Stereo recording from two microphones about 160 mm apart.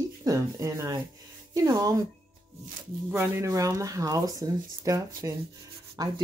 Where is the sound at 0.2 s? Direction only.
20° right (ahead or behind).